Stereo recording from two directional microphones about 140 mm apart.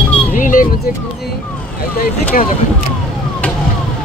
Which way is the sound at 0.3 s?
75° left (ahead or behind).